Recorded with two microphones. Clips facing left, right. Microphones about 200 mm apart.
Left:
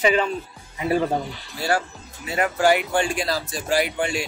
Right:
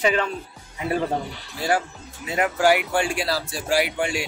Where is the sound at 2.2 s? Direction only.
15° right (ahead or behind).